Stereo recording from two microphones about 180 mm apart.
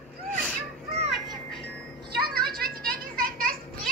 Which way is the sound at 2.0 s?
60° right (ahead or behind).